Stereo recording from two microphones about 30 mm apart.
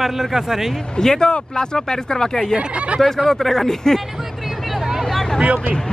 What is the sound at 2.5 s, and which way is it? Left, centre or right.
Speech, right.